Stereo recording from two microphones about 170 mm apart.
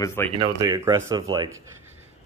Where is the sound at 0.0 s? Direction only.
15° left (ahead or behind).